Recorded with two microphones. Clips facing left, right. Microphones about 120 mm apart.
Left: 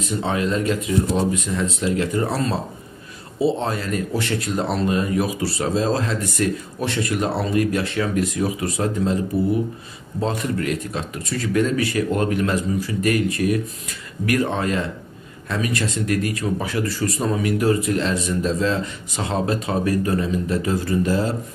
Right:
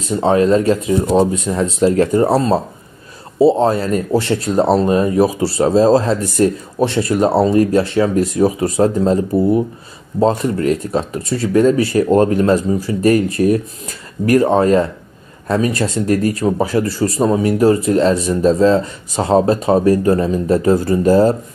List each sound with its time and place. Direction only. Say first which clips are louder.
0.0 s speech: right 9 dB; 35° right (ahead or behind)